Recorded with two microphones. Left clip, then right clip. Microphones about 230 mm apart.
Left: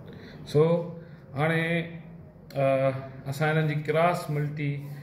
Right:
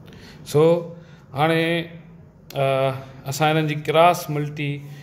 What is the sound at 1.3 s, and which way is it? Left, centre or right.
A man's voice, right.